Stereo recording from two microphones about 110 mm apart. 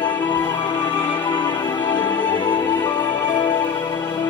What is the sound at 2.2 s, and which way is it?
Music, 45° left (ahead or behind).